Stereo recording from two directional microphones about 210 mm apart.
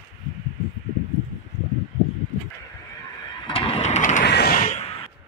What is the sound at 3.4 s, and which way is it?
Vehicle, 25° left (ahead or behind).